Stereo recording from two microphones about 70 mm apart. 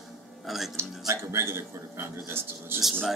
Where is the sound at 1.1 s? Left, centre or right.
Right.